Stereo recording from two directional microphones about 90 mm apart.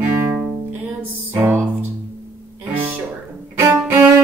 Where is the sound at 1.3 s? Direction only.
25° right (ahead or behind).